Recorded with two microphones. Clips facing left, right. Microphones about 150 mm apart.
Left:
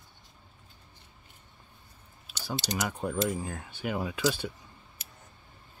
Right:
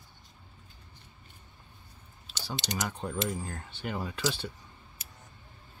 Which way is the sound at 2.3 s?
5° left (ahead or behind).